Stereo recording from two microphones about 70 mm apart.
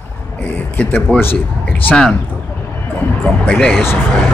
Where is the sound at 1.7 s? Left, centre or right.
Centre.